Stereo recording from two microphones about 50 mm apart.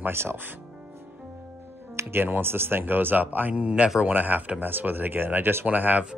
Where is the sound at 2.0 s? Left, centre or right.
Right.